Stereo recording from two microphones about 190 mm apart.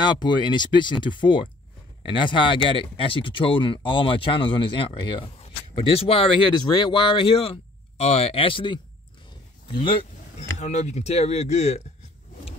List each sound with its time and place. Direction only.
0.1 s speech: 25° left (ahead or behind)